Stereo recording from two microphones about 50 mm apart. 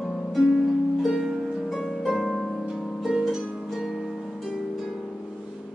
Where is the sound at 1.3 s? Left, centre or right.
Centre.